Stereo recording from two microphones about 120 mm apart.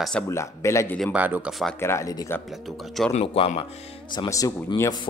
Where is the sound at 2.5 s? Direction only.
Centre (ahead or behind).